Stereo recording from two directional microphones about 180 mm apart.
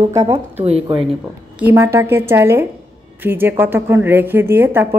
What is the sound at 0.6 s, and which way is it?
Speech, 35° right (ahead or behind).